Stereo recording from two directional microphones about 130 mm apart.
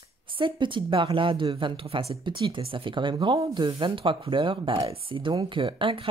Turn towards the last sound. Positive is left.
turn(degrees=-45)  # may be behind; listen again after turning